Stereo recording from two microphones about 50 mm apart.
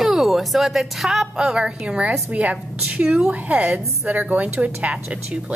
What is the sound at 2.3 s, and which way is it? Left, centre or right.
A woman's voice, right.